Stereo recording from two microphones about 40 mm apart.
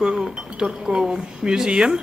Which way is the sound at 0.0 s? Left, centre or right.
Centre.